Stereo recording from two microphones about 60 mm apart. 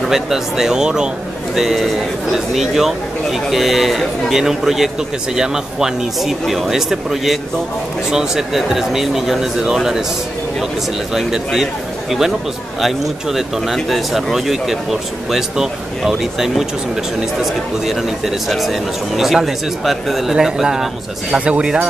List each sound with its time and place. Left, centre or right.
0.1 s speech: centre
11.1 s speech: centre